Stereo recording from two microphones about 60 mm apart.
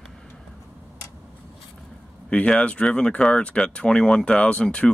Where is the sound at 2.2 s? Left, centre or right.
Centre.